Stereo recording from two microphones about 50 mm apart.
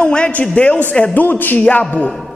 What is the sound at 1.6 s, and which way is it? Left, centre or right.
Speech, left.